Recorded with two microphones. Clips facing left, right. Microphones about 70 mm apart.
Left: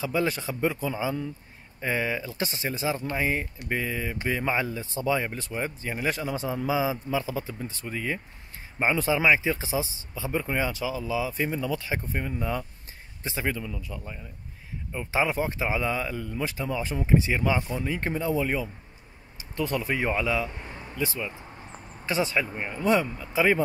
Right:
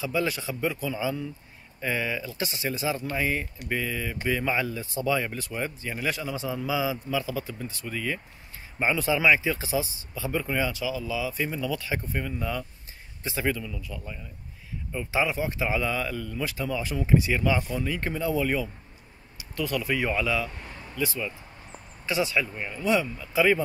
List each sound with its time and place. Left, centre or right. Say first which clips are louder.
0.0 s speech: left 1 dB; left
19.3 s speech: left 1 dB; left
20.5 s speech: even; left